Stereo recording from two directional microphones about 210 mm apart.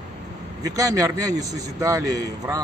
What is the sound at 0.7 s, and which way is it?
A man's voice, 15° right (ahead or behind).